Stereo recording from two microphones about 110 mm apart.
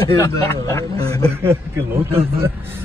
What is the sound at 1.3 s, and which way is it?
Speech, 20° right (ahead or behind).